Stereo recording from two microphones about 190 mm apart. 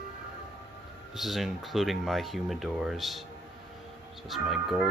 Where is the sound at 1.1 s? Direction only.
Centre (ahead or behind).